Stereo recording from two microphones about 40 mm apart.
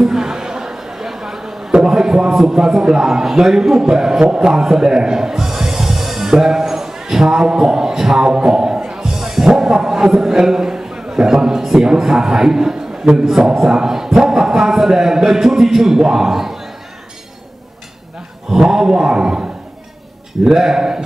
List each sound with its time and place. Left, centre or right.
0.0 s a sound: centre
1.7 s a man's voice: centre
18.5 s a man's voice: centre
20.4 s a man's voice: centre